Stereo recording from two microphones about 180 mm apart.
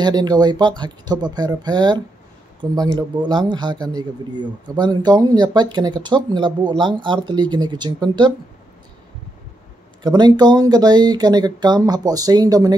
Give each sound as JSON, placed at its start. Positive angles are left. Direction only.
{"t": 0.0, "sound": "speech", "side_deg": -20}
{"t": 10.0, "sound": "speech", "side_deg": -25}